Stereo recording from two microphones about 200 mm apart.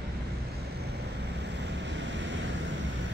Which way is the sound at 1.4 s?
60° right (ahead or behind).